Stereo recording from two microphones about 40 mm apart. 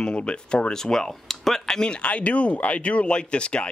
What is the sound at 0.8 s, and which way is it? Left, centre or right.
Speech, centre.